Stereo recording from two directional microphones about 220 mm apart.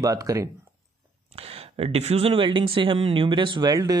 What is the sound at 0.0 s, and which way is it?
Speech, 15° right (ahead or behind).